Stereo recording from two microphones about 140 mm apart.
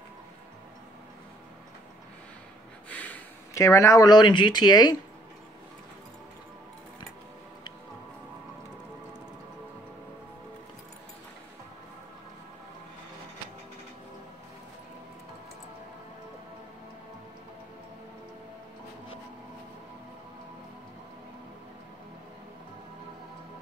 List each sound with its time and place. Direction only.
2.9 s snort: 10° left (ahead or behind)
3.6 s speech: 20° left (ahead or behind)